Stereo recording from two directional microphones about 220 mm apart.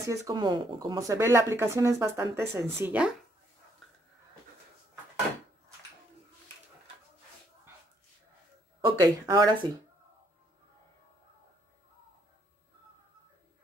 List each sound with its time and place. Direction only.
0.0 s speech: 15° right (ahead or behind)
8.8 s speech: 15° right (ahead or behind)